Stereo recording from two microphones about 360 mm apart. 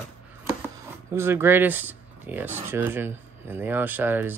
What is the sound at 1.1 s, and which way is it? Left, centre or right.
Speech, centre.